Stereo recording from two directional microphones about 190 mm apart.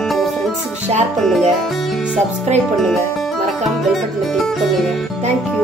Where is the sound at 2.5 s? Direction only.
35° right (ahead or behind).